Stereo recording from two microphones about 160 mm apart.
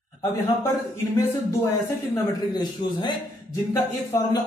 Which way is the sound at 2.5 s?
25° left (ahead or behind).